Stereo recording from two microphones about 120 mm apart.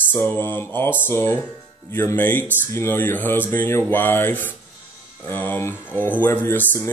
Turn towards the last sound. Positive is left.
turn(degrees=20)  # may be behind; listen again after turning